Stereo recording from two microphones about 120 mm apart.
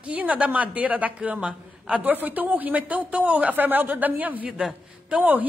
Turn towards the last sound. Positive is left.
turn(degrees=-15)  # may be behind; listen again after turning